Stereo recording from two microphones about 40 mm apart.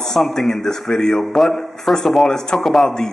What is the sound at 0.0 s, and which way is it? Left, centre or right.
A man's voice, centre.